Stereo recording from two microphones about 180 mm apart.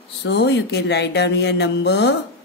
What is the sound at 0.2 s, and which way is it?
Speech, 75° left (ahead or behind).